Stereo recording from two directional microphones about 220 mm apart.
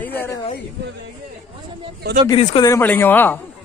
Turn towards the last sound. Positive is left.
turn(degrees=10)  # may be behind; listen again after turning